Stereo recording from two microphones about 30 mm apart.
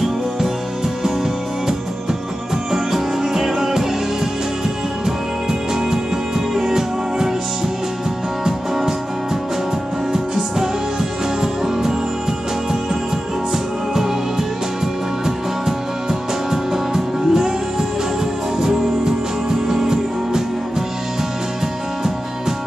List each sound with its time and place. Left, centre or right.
2.7 s music: centre
5.0 s music: centre
10.1 s music: centre
15.2 s music: centre